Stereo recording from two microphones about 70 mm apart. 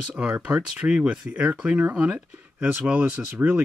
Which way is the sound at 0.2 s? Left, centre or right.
Centre.